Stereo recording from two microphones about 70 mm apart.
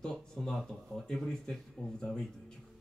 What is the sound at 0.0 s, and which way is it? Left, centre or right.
Speech, centre.